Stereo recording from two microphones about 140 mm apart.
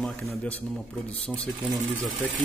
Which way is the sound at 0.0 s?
10° left (ahead or behind).